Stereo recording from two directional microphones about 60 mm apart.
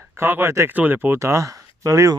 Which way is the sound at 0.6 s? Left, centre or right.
Right.